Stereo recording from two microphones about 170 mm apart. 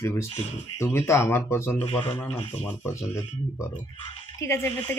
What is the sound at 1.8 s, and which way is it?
Speech, 35° left (ahead or behind).